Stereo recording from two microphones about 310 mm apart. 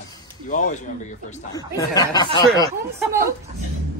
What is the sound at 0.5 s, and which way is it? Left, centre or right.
Speech, left.